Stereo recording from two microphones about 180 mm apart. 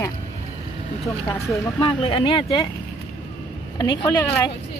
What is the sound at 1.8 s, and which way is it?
Speech, 30° left (ahead or behind).